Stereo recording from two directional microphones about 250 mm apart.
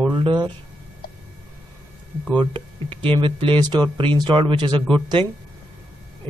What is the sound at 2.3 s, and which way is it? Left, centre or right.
Speech, centre.